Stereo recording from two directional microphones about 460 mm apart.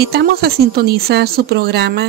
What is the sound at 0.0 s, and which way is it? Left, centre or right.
Speech, right.